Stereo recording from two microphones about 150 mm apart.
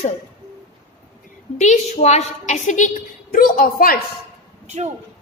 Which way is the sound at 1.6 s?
50° left (ahead or behind).